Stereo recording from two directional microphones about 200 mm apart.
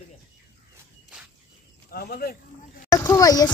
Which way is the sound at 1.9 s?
50° left (ahead or behind).